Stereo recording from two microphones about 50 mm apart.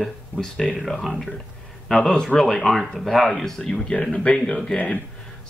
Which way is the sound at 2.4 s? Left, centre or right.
Centre.